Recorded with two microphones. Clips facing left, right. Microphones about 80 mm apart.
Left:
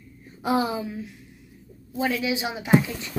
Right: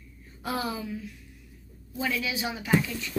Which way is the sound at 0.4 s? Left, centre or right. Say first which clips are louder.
Left 7 dB; centre.